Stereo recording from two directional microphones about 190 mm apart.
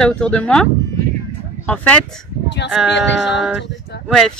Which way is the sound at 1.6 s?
5° left (ahead or behind).